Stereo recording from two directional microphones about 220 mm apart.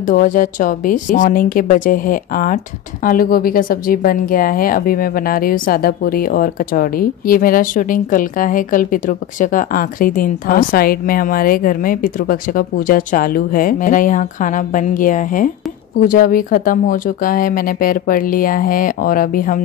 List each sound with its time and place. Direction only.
0.0 s a woman's voice: 35° left (ahead or behind)